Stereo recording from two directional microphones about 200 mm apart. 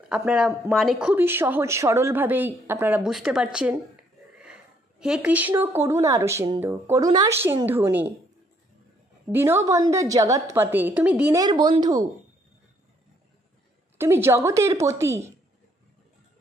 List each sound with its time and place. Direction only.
0.1 s speech: 5° right (ahead or behind)
9.3 s speech: 10° right (ahead or behind)
11.4 s speech: 20° right (ahead or behind)
13.9 s speech: 10° right (ahead or behind)